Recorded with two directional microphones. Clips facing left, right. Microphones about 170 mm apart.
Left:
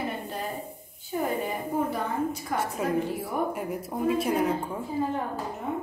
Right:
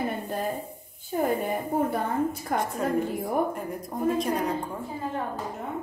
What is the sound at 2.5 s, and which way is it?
Speech, 50° right (ahead or behind).